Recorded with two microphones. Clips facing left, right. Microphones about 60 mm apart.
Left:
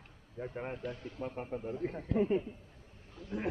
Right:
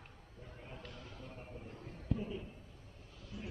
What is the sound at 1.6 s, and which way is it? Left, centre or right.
Speech, left.